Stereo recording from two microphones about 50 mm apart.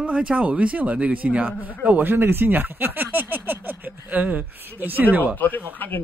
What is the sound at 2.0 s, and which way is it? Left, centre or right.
Speech, right.